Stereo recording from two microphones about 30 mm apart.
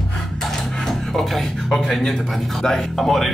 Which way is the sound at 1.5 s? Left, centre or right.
Centre.